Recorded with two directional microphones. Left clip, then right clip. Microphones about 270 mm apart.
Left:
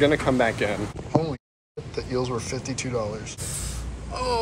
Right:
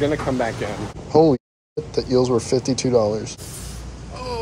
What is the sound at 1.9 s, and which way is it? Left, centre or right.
Speech, centre.